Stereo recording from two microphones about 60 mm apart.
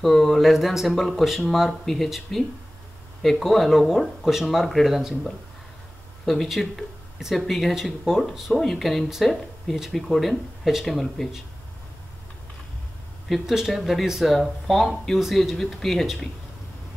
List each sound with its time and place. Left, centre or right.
0.0 s speech: centre
13.3 s speech: centre
15.5 s speech: centre